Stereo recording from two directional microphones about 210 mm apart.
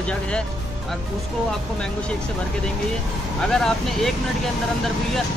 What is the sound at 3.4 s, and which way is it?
Speech, 5° left (ahead or behind).